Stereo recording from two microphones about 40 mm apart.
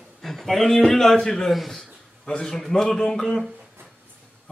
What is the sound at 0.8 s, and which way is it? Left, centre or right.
Speech, centre.